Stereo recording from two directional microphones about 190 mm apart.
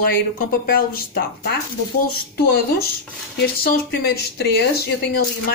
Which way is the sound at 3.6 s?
55° left (ahead or behind).